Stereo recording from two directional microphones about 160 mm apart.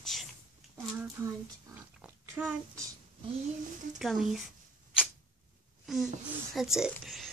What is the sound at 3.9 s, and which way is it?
Speech, centre (ahead or behind).